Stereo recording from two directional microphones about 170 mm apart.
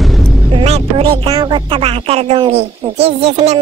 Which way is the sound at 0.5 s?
35° right (ahead or behind).